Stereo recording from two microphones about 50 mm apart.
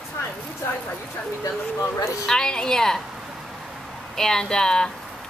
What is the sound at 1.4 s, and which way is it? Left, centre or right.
Speech, left.